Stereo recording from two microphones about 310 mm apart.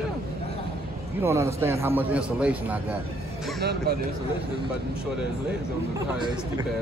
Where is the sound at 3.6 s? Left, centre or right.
Right.